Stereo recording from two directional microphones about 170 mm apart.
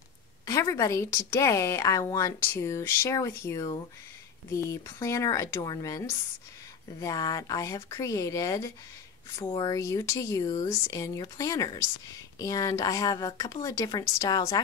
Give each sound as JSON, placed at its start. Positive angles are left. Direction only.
{"t": 0.5, "sound": "a woman's voice", "side_deg": 20}